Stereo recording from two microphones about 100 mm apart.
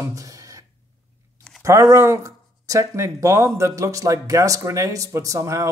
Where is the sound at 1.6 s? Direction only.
35° right (ahead or behind).